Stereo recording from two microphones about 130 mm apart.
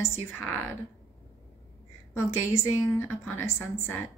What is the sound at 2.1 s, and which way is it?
A woman's voice, 20° left (ahead or behind).